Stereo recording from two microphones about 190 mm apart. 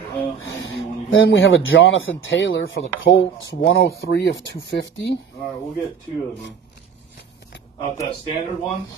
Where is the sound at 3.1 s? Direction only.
55° left (ahead or behind).